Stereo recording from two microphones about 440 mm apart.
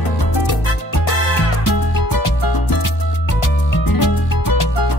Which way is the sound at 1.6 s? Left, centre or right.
Left.